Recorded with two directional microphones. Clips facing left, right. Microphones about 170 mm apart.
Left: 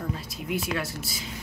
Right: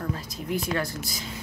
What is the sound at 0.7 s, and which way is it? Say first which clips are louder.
Speech: right 2 dB; 5° left (ahead or behind).